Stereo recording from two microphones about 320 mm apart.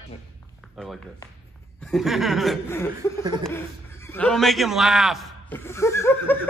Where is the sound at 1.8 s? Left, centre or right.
Centre.